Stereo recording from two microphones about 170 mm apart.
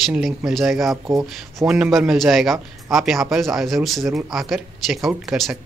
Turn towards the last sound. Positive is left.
turn(degrees=0)  # may be behind; listen again after turning